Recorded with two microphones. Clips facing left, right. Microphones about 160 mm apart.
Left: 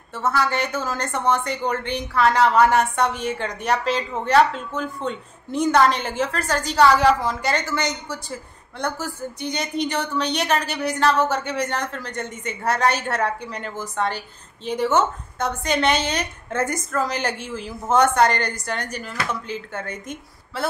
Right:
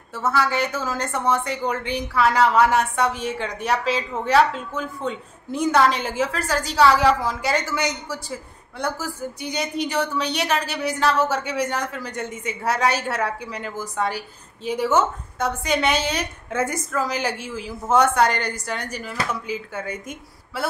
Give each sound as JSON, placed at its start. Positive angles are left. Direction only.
{"t": 0.1, "sound": "a woman's voice", "side_deg": -5}